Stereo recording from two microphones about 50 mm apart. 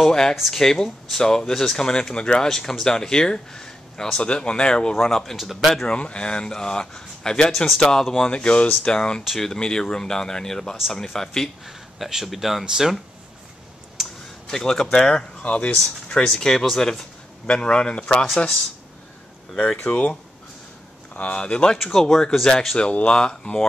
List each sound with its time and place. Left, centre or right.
0.0 s speech: centre
4.9 s speech: centre
5.9 s speech: centre
8.3 s speech: left
11.6 s speech: centre
14.0 s a sound: centre
14.5 s speech: centre
15.4 s speech: left
16.3 s speech: centre
17.5 s speech: centre
19.8 s speech: left
21.7 s speech: centre
22.8 s speech: left